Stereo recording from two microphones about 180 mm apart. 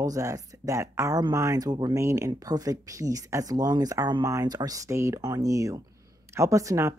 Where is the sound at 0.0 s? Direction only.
20° right (ahead or behind).